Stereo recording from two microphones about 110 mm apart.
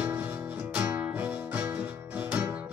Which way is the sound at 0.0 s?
15° right (ahead or behind).